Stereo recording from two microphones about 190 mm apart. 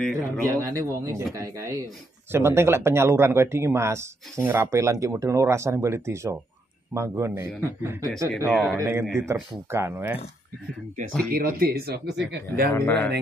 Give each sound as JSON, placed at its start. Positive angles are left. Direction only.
{"t": 0.5, "sound": "speech", "side_deg": -15}
{"t": 11.3, "sound": "speech", "side_deg": -50}
{"t": 12.7, "sound": "a man's voice", "side_deg": 10}